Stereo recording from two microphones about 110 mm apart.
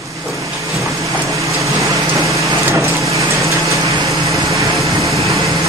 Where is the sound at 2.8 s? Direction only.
30° right (ahead or behind).